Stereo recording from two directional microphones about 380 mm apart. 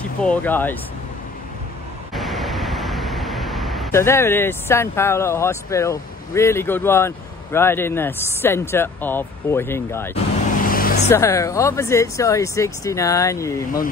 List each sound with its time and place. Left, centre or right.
0.2 s speech: centre
2.1 s speech: centre
10.6 s vehicle: left
11.1 s speech: centre